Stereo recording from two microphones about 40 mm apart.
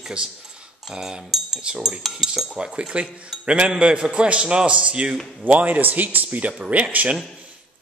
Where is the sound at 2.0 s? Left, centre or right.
Centre.